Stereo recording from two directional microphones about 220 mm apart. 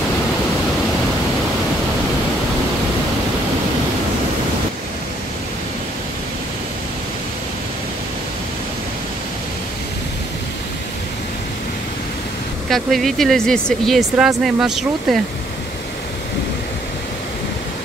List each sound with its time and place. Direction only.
12.6 s speech: centre (ahead or behind)